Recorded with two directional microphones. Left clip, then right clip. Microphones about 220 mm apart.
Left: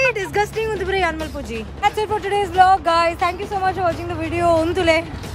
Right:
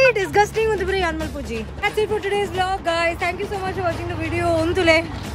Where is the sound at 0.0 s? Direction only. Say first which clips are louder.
Right 3 dB; centre (ahead or behind).